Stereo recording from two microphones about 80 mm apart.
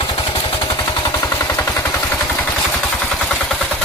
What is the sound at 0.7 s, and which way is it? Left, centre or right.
Machine gun, left.